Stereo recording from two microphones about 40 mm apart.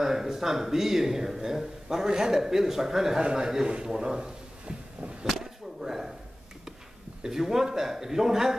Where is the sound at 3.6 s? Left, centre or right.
Centre.